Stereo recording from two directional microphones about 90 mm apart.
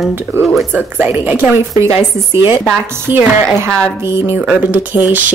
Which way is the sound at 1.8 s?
30° right (ahead or behind).